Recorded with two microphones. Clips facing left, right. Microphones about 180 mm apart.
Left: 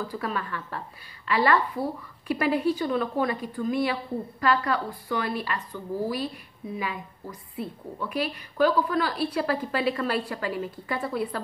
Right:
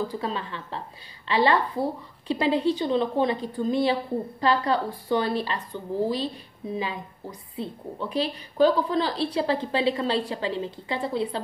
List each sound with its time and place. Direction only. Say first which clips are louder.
0.2 s a woman's voice: even; 25° right (ahead or behind)